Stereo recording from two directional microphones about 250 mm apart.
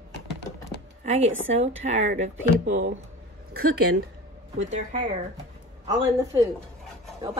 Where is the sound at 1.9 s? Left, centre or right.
Right.